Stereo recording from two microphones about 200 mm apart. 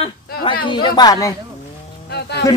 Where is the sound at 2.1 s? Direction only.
55° left (ahead or behind).